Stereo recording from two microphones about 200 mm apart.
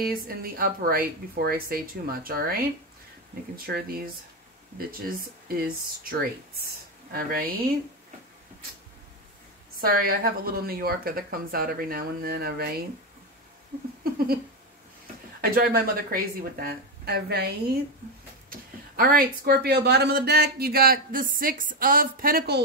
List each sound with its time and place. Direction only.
0.0 s speech: 50° right (ahead or behind)
9.8 s speech: 45° right (ahead or behind)
15.4 s speech: 45° right (ahead or behind)
18.5 s speech: 45° right (ahead or behind)